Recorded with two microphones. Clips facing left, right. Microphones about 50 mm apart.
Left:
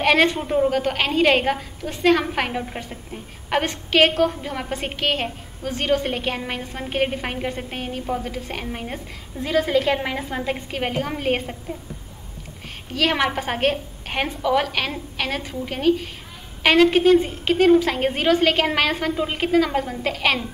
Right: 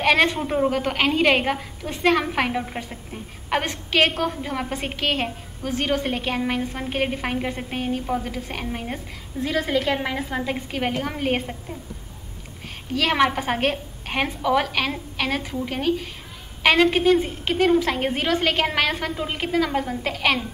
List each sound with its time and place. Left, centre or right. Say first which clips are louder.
0.0 s a man's voice: left 1 dB; centre
0.5 s a woman's voice: left 2 dB; centre
12.9 s a woman's voice: right 1 dB; centre